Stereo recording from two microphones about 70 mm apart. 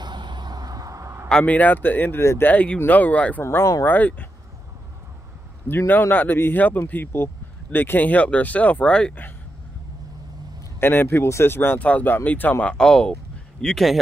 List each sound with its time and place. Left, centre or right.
0.0 s a sound: right
1.3 s speech: left
2.5 s speech: centre
3.4 s speech: left
3.8 s speech: left
5.7 s speech: left; by 9.1 s centre
10.8 s speech: left
12.7 s speech: centre